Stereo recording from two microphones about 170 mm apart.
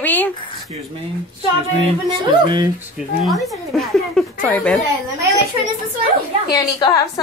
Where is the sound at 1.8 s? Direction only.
30° right (ahead or behind).